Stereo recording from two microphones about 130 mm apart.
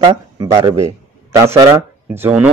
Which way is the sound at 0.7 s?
25° right (ahead or behind).